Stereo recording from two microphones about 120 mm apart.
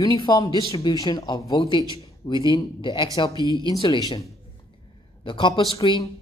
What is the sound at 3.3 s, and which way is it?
Speech, 35° right (ahead or behind).